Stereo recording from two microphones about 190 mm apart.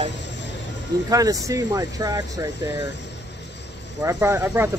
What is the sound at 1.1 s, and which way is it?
Speech, 20° right (ahead or behind).